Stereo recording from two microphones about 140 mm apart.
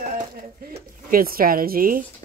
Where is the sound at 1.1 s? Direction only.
90° right.